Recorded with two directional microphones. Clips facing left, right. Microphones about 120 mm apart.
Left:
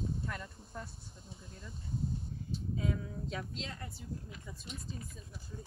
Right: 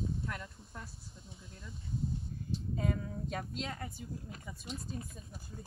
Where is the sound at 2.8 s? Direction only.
50° right (ahead or behind).